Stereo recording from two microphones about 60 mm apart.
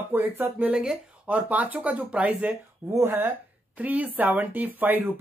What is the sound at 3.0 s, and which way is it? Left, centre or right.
Speech, right.